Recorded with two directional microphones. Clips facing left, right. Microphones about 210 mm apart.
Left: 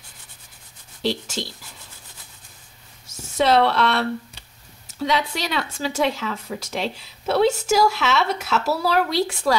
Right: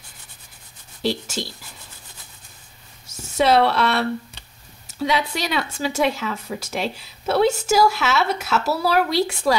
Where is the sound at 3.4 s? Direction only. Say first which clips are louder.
Right 1 dB; 10° right (ahead or behind).